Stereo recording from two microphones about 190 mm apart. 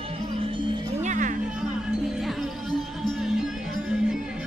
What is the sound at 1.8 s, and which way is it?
Music, centre (ahead or behind).